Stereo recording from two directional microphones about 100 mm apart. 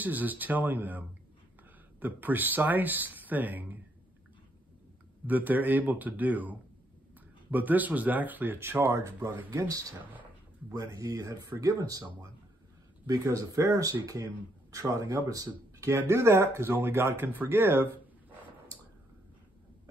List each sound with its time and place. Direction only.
0.0 s speech: 15° right (ahead or behind)
5.2 s speech: 15° right (ahead or behind)
9.7 s speech: 35° right (ahead or behind)